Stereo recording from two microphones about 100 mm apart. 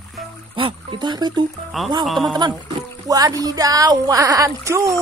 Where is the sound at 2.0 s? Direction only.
Centre (ahead or behind).